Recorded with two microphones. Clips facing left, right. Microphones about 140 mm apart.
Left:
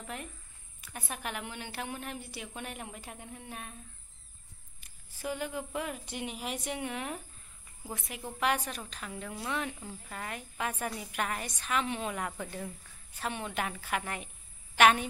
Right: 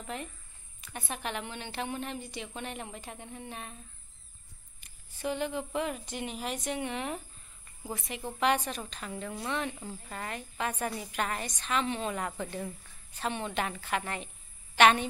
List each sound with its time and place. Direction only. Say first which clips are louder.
0.0 s a woman's voice: right 3 dB; 5° left (ahead or behind)
4.7 s a woman's voice: right 2 dB; 5° left (ahead or behind)